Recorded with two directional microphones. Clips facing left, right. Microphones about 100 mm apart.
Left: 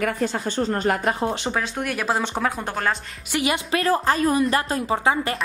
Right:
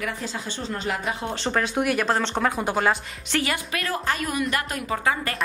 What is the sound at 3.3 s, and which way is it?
Speech, 15° left (ahead or behind).